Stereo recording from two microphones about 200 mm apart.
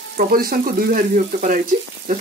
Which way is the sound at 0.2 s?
45° right (ahead or behind).